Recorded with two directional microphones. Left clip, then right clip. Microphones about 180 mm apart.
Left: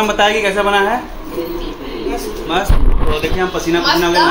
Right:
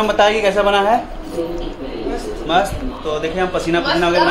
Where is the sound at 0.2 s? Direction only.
10° right (ahead or behind).